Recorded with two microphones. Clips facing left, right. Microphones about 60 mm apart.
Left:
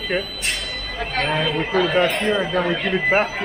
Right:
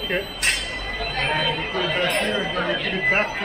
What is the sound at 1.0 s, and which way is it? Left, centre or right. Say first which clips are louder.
Speech: left 4 dB; left.